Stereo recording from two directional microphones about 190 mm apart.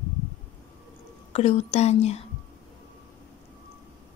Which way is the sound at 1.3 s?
35° left (ahead or behind).